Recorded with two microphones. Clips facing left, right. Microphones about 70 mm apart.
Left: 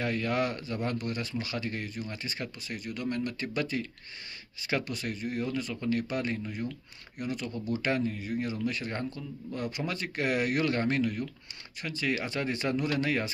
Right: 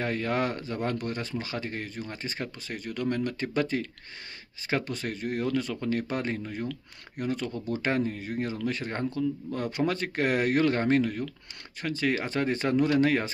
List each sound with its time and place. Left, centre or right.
0.0 s speech: right